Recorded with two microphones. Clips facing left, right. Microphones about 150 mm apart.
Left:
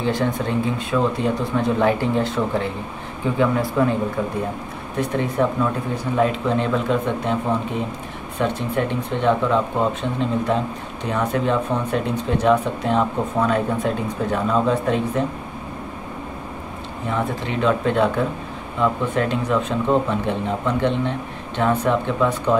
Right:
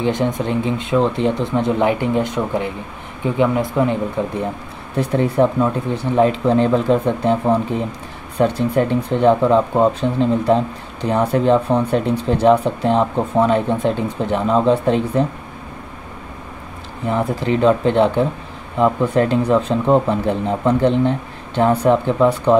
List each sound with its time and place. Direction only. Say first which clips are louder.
0.0 s speech: right 3 dB; 20° right (ahead or behind)
8.4 s speech: right 6 dB; 35° right (ahead or behind)
17.1 s speech: right 6 dB; 35° right (ahead or behind)